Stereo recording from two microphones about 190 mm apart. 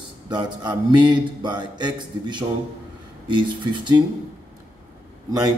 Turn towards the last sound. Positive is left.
turn(degrees=-20)  # may be behind; listen again after turning